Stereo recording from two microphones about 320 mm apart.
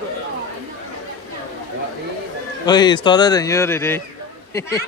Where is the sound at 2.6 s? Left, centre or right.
Centre.